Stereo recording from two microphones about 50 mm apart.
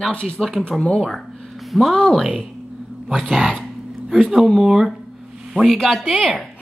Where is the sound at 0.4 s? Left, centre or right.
Centre.